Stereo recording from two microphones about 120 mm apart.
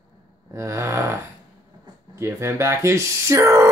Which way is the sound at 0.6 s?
25° right (ahead or behind).